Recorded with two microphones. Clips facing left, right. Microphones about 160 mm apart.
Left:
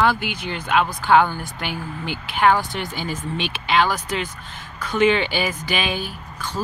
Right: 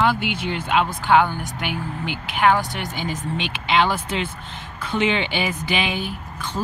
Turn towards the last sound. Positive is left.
turn(degrees=-20)  # may be behind; listen again after turning